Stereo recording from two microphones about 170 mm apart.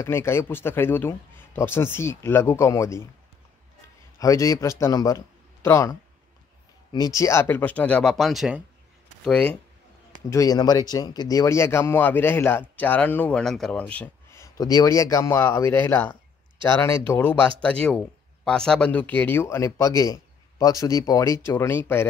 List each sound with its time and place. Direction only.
0.0 s speech: 15° left (ahead or behind)
4.2 s a man's voice: 20° left (ahead or behind)
10.3 s speech: 20° left (ahead or behind)